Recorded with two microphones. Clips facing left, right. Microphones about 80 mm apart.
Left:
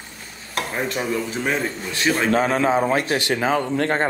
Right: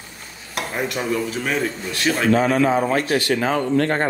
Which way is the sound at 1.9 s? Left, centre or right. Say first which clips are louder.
Right 1 dB; left.